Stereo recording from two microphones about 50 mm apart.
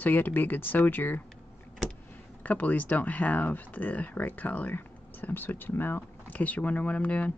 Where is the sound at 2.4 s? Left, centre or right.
Left.